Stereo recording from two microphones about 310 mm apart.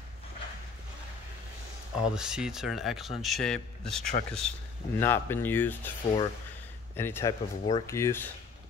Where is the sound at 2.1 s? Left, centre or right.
Centre.